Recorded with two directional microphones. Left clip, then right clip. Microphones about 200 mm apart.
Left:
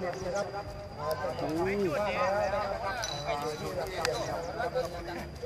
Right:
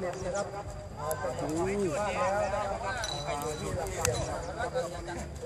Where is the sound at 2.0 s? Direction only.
45° left (ahead or behind).